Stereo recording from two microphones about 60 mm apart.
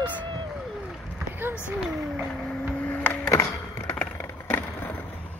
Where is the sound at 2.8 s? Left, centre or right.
Left.